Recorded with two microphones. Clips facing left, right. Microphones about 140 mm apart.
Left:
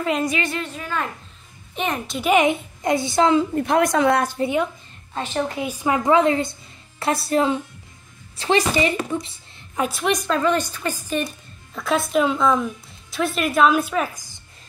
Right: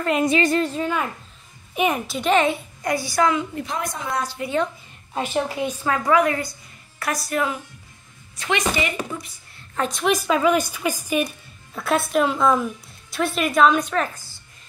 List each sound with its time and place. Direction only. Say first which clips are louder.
0.4 s speech: right 7 dB; 40° right (ahead or behind)
1.8 s a woman's voice: right 3 dB; 5° right (ahead or behind)
2.3 s a woman's voice: left 2 dB; 20° left (ahead or behind)
3.5 s a woman's voice: left 10 dB; 65° left (ahead or behind)
5.1 s a woman's voice: right 1 dB; 10° right (ahead or behind)
5.6 s a woman's voice: left 1 dB; 10° left (ahead or behind); by 9.7 s 25° left (ahead or behind)
9.8 s a woman's voice: even; 5° left (ahead or behind)